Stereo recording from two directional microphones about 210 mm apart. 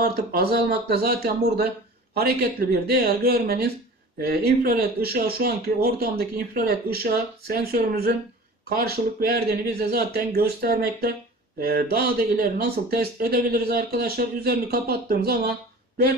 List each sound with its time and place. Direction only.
0.0 s speech: 45° right (ahead or behind)